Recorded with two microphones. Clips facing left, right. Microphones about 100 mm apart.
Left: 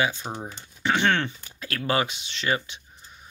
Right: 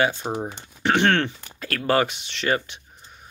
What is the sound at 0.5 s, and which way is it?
Speech, 65° right (ahead or behind).